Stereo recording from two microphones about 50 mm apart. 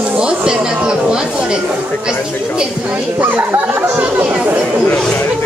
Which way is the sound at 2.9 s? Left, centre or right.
Right.